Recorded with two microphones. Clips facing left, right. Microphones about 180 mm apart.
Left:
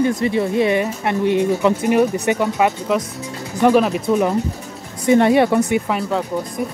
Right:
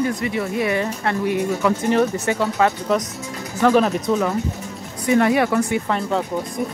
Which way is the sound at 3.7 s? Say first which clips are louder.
Left 1 dB; 5° left (ahead or behind).